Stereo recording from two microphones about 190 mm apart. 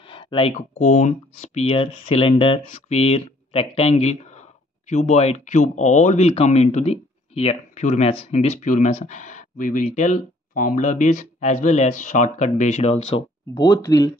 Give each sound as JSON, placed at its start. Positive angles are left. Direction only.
{"t": 0.1, "sound": "speech", "side_deg": 25}
{"t": 13.6, "sound": "speech", "side_deg": 15}